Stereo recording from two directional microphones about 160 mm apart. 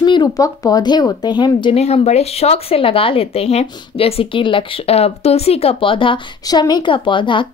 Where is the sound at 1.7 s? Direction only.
40° left (ahead or behind).